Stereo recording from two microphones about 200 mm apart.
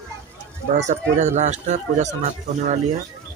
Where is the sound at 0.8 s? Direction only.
35° right (ahead or behind).